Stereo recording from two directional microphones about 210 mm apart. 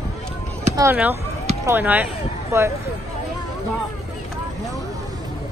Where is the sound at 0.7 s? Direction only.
10° right (ahead or behind).